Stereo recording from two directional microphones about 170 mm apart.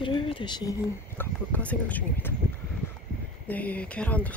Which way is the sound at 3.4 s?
10° left (ahead or behind).